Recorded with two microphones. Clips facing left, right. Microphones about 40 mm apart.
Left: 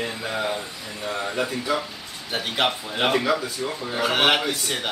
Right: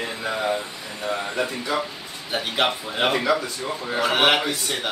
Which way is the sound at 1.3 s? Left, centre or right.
Centre.